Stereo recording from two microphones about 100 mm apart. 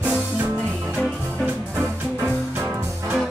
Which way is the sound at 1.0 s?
10° left (ahead or behind).